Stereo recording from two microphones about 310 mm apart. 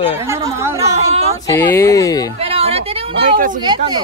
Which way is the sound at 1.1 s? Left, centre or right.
Centre.